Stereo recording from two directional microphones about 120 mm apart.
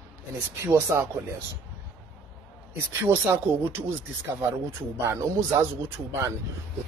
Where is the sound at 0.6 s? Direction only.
25° right (ahead or behind).